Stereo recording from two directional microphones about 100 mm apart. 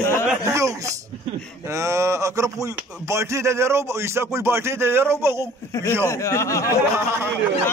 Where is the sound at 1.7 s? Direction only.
30° right (ahead or behind).